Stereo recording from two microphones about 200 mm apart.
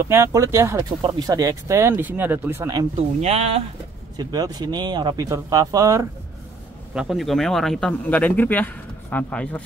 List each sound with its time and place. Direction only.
0.0 s speech: 15° right (ahead or behind)
3.2 s speech: 30° right (ahead or behind)
4.2 s speech: 20° right (ahead or behind)
6.9 s speech: 5° right (ahead or behind)